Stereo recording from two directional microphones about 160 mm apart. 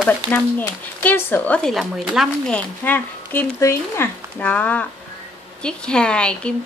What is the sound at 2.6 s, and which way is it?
A woman's voice, 10° left (ahead or behind).